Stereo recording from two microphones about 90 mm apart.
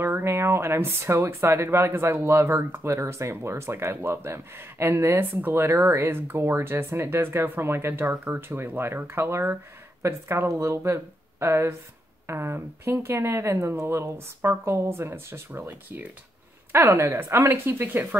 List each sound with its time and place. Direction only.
0.0 s speech: 30° right (ahead or behind)